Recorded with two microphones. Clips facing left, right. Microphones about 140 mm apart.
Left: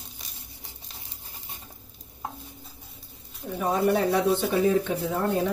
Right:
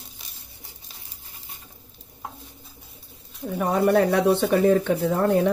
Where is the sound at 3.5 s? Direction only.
60° right (ahead or behind).